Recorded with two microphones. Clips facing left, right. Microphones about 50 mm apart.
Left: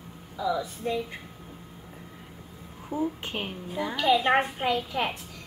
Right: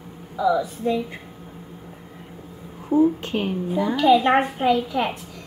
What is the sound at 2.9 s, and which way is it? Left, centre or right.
Speech, right.